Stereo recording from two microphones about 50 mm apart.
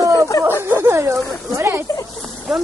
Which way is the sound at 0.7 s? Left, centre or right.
Right.